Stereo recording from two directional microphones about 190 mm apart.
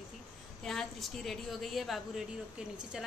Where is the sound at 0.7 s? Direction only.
Centre (ahead or behind).